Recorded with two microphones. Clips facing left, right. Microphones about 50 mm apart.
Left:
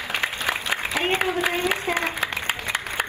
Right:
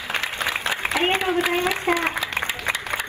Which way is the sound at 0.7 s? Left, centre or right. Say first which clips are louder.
Right 3 dB; right.